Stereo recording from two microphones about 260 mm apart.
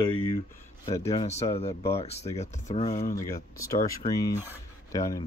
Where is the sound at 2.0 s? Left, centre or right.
Left.